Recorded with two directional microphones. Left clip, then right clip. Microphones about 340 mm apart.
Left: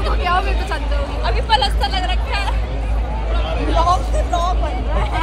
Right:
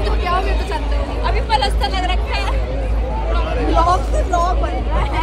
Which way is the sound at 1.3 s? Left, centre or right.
Centre.